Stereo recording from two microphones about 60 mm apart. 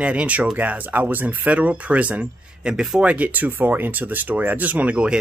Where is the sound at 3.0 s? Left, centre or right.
Right.